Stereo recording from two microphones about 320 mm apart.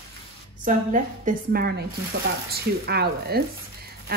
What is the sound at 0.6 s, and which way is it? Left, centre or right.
Speech, right.